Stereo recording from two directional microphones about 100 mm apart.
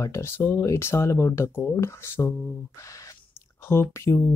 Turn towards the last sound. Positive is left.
turn(degrees=25)  # may be behind; listen again after turning